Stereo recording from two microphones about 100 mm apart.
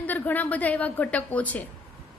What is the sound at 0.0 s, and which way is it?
A woman's voice, 15° left (ahead or behind).